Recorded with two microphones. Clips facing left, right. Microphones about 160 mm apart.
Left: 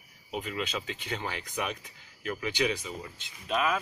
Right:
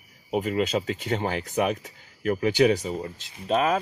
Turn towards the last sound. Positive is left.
turn(degrees=-40)  # may be behind; listen again after turning